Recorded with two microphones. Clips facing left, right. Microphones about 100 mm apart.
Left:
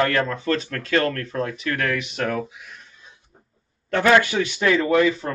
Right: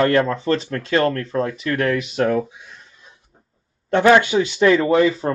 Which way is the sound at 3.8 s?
25° right (ahead or behind).